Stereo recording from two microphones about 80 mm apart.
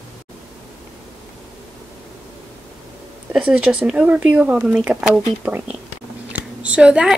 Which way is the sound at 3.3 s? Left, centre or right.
Centre.